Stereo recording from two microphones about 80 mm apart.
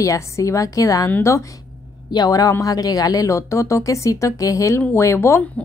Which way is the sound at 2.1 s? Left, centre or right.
Left.